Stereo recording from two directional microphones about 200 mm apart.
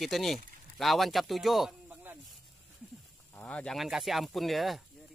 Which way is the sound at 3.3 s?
5° left (ahead or behind).